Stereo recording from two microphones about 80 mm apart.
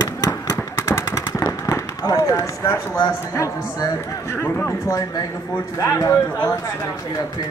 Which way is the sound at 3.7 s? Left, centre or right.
Left.